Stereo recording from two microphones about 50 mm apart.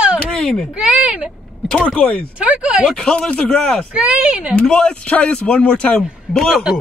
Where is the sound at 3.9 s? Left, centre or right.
Centre.